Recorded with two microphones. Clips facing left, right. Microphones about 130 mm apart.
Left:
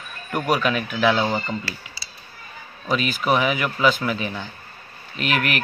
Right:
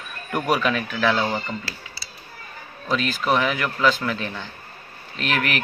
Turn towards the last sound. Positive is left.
turn(degrees=5)  # may be behind; listen again after turning